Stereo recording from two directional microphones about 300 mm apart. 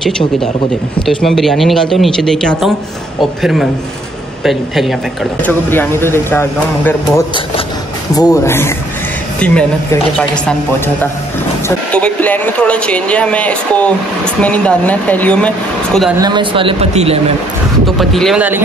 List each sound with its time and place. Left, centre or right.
1.0 s speech: centre
8.1 s speech: centre
11.6 s speech: centre
16.2 s speech: centre
17.8 s speech: centre